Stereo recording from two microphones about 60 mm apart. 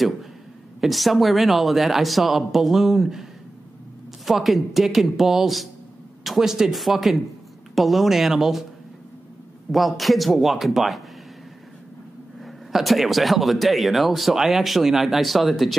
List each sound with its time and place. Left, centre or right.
0.7 s speech: centre
4.3 s speech: centre
9.7 s speech: centre
12.4 s speech: centre